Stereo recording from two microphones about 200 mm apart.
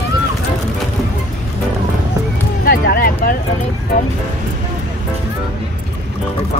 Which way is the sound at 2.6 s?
45° left (ahead or behind).